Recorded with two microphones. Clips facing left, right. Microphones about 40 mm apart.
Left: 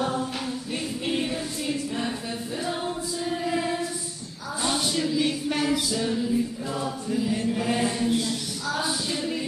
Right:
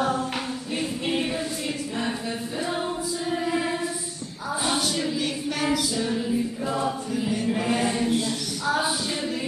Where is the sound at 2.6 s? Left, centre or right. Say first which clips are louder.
Right 2 dB; centre.